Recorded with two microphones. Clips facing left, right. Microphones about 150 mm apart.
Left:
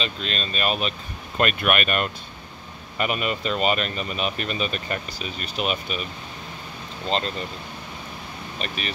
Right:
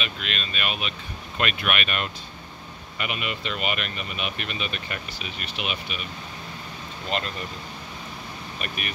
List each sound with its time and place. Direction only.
0.0 s speech: 35° left (ahead or behind)
7.1 s speech: 30° left (ahead or behind)
8.5 s speech: 30° left (ahead or behind)